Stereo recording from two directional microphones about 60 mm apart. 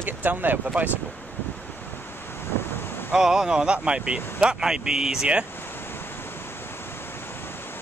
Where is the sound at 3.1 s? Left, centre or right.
Centre.